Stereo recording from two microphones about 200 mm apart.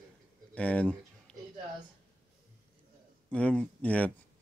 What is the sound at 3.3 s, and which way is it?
Speech, 5° left (ahead or behind).